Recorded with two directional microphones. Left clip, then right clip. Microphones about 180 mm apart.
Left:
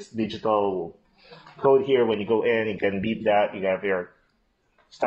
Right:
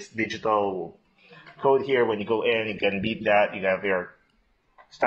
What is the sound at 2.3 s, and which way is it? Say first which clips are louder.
Speech: left 2 dB; 25° left (ahead or behind).